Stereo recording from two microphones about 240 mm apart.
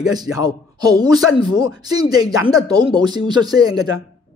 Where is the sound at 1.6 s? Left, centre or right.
Centre.